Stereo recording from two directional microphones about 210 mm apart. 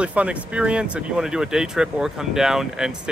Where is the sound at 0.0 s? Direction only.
5° right (ahead or behind).